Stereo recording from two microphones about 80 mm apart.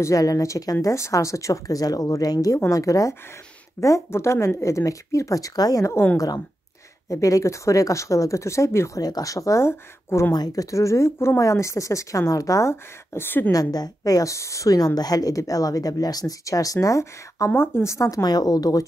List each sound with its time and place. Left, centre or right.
0.0 s a woman's voice: left
10.3 s speech: left
13.5 s a woman's voice: left
18.2 s a woman's voice: left